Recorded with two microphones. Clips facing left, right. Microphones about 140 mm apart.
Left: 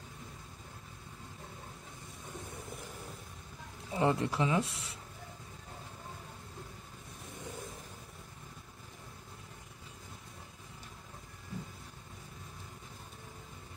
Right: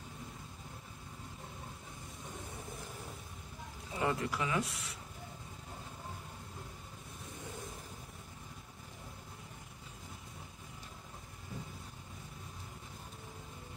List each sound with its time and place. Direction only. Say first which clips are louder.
3.9 s speech: left 4 dB; 30° left (ahead or behind)